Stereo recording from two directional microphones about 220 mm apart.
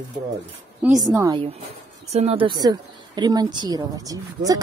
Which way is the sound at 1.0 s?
15° right (ahead or behind).